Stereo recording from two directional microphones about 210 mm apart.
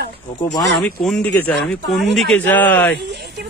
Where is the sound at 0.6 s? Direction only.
Centre (ahead or behind).